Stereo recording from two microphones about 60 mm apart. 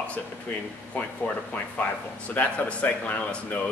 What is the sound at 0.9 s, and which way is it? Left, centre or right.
Speech, left.